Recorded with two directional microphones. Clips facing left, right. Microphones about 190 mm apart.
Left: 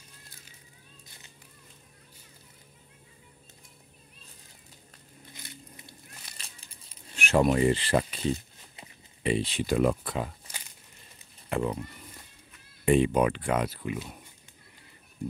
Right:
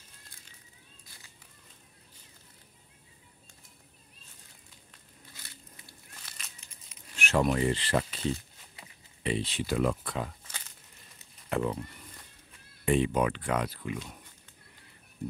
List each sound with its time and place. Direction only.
5.3 s crushing: 20° left (ahead or behind)
6.3 s a sound: 30° left (ahead or behind)
7.2 s speech: 15° left (ahead or behind)
12.8 s speech: 10° left (ahead or behind)